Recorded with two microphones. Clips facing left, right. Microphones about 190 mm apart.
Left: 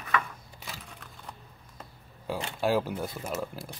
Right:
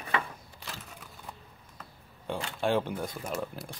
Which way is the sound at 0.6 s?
Centre (ahead or behind).